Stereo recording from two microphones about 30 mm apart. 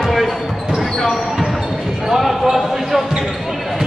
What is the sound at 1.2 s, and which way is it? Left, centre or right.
Basketball bounce, centre.